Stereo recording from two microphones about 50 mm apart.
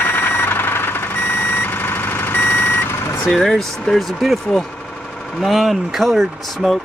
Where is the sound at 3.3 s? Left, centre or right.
Centre.